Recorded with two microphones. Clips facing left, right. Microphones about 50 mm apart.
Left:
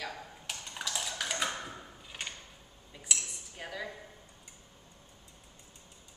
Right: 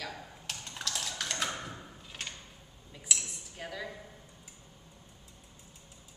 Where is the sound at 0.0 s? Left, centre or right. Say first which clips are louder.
Left 1 dB; centre.